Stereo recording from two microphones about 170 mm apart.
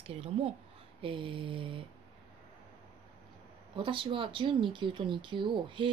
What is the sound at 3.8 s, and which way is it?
Speech, 30° right (ahead or behind).